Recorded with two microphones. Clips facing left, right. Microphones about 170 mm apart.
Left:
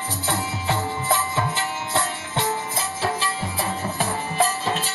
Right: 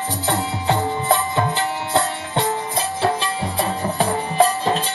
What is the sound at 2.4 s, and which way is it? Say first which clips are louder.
Music: right 4 dB; 20° right (ahead or behind).